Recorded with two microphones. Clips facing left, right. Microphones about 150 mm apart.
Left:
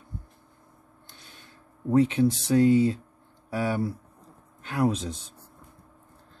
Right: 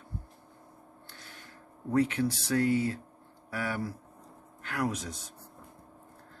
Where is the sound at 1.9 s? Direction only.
20° left (ahead or behind).